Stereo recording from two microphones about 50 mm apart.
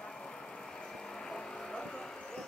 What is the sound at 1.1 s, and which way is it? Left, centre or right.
Vehicle, centre.